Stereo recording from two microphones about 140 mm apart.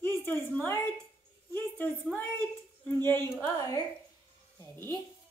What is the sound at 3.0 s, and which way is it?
Speech, 15° left (ahead or behind).